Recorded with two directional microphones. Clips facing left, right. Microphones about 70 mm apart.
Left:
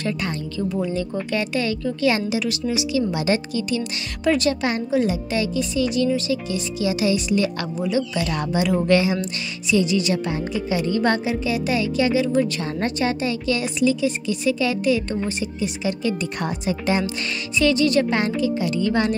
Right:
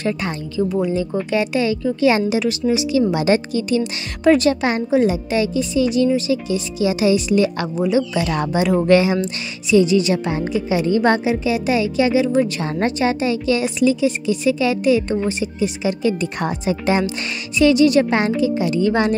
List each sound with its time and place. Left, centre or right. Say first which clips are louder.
0.0 s speech: right 3 dB; right
2.0 s speech: right 5 dB; right
17.6 s speech: right 5 dB; centre